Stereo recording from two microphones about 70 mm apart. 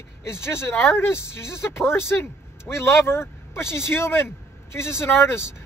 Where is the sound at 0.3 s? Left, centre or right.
Left.